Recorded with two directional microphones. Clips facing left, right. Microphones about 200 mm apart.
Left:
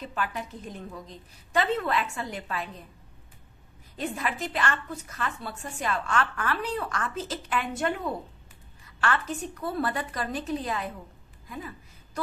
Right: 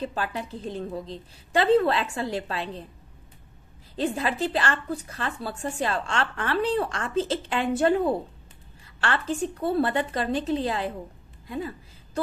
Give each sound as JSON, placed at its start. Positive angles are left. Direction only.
{"t": 0.0, "sound": "a woman's voice", "side_deg": -30}
{"t": 3.9, "sound": "a woman's voice", "side_deg": -30}
{"t": 11.4, "sound": "a sound", "side_deg": -30}